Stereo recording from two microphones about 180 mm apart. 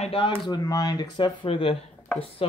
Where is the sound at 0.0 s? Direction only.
30° left (ahead or behind).